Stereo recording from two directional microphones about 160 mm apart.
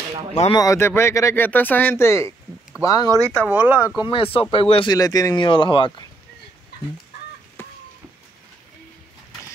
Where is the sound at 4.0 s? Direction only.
35° left (ahead or behind).